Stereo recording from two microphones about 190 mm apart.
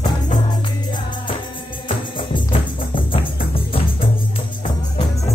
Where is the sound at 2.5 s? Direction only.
30° left (ahead or behind).